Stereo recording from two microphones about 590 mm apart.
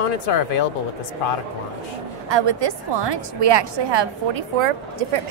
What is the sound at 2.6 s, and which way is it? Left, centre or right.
A woman's voice, right.